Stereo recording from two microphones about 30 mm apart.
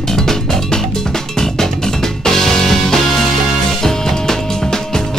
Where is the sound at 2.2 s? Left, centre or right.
Centre.